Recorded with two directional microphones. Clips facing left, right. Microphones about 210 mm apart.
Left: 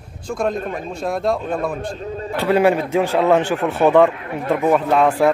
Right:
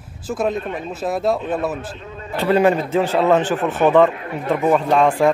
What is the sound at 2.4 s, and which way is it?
A man's voice, 10° left (ahead or behind).